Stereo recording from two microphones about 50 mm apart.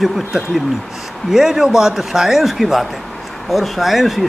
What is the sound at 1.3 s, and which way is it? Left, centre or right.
A man's voice, centre.